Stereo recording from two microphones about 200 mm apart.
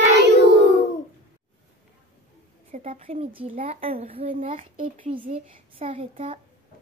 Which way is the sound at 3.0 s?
30° right (ahead or behind).